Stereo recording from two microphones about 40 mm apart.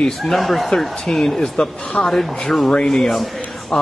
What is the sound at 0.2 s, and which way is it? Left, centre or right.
Speech, centre.